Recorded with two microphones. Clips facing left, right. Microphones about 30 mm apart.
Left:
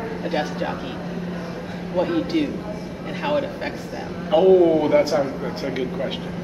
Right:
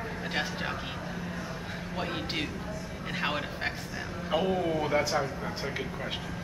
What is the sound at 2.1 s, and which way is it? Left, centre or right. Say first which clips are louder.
A woman's voice: left 11 dB; centre.